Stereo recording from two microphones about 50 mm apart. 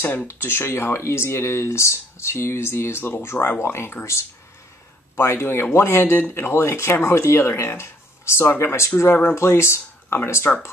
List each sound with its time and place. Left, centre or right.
0.0 s speech: left
0.3 s speech: left
3.1 s speech: left
3.6 s speech: left
5.2 s speech: left
10.1 s speech: left